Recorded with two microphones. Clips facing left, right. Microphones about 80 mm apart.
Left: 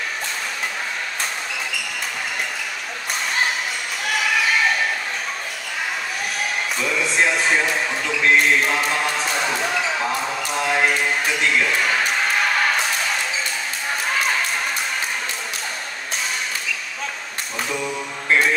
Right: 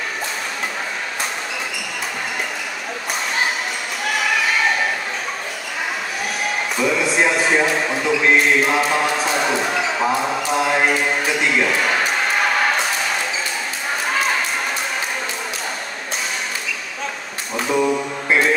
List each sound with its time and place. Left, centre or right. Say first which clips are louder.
6.8 s speech: right 4 dB; centre
17.6 s mantra: right 10 dB; right